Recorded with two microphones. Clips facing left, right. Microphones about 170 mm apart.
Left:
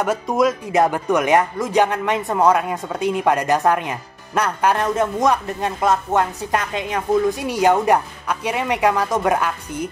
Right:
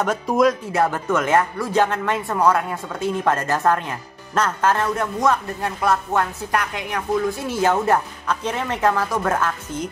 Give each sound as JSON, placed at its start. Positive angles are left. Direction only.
{"t": 0.0, "sound": "speech", "side_deg": 5}
{"t": 0.7, "sound": "speech", "side_deg": 15}